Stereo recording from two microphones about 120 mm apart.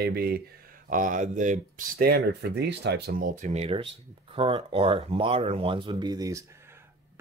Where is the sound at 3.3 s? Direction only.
75° right (ahead or behind); by 6.4 s 30° right (ahead or behind).